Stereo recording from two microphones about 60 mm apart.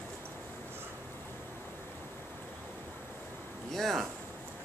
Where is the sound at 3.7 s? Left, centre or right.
Centre.